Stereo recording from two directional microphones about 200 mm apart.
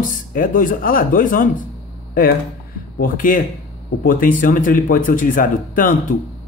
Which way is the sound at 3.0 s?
40° left (ahead or behind).